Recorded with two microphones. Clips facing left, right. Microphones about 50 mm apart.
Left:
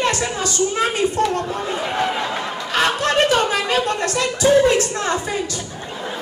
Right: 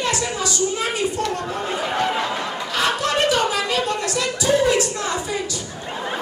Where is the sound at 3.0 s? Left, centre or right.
Left.